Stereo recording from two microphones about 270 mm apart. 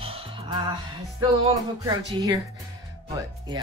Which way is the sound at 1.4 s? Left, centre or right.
Centre.